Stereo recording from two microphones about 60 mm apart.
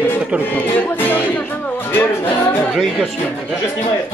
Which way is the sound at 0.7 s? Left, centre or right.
Left.